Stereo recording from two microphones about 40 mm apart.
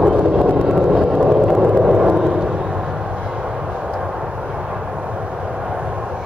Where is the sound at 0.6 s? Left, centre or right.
Centre.